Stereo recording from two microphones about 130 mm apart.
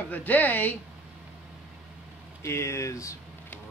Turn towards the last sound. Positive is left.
turn(degrees=25)  # may be behind; listen again after turning